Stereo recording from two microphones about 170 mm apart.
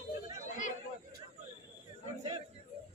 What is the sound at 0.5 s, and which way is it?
Chatter, 45° left (ahead or behind).